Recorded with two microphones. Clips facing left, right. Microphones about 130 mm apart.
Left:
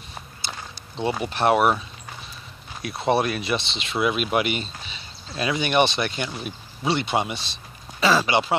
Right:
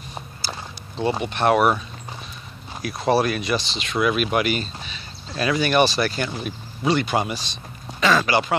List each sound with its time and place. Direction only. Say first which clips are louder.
1.3 s speech: right 1 dB; 25° left (ahead or behind)
2.8 s speech: right 2 dB; 25° left (ahead or behind)
6.9 s speech: right 2 dB; 25° left (ahead or behind)